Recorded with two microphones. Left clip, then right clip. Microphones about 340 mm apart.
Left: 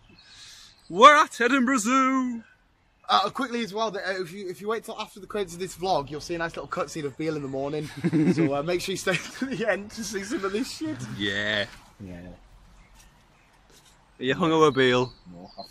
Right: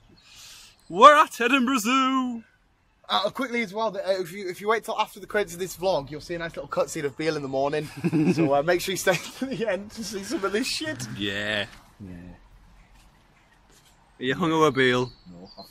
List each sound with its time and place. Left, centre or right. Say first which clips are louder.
0.9 s a man's voice: right 1 dB; centre
4.1 s speech: right 4 dB; centre
5.8 s a man's voice: even; centre
6.7 s speech: right 4 dB; centre
7.9 s a man's voice: even; centre
8.5 s speech: right 4 dB; right
9.4 s a man's voice: left 1 dB; centre
10.5 s speech: right 3 dB; right
11.1 s a man's voice: left 2 dB; centre
14.1 s a man's voice: left 1 dB; centre